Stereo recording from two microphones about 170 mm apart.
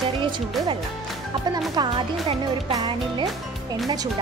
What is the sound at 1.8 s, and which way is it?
Speech, 25° right (ahead or behind).